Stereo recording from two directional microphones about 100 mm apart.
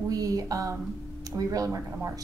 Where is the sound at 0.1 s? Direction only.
35° right (ahead or behind).